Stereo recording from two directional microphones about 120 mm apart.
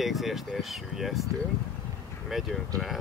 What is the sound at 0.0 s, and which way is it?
Speech, centre (ahead or behind).